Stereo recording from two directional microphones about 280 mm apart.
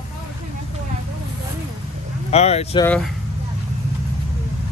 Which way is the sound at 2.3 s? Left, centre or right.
Left.